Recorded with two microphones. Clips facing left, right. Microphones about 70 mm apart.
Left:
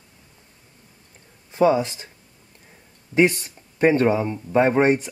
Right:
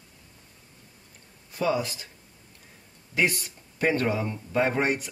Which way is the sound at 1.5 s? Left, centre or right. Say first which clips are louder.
Left 8 dB; left.